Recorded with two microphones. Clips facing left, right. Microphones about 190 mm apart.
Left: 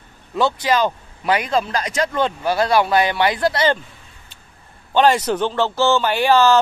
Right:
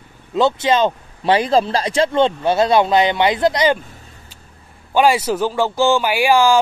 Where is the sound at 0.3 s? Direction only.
20° right (ahead or behind).